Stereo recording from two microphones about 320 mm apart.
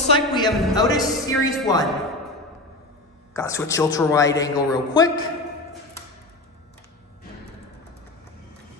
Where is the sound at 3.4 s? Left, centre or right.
Centre.